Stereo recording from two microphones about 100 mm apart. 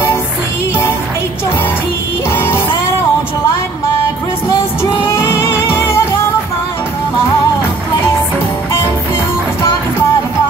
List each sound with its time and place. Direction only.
4.9 s music: 25° left (ahead or behind)